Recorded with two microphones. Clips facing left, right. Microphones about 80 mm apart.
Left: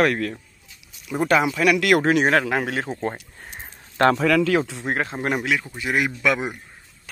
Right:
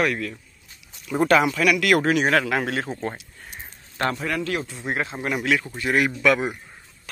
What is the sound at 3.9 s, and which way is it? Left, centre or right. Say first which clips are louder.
Speech: left 8 dB; left.